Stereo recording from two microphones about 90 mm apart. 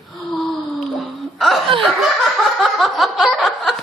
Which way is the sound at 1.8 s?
Centre (ahead or behind).